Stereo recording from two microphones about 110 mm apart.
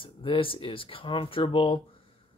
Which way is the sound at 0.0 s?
50° left (ahead or behind).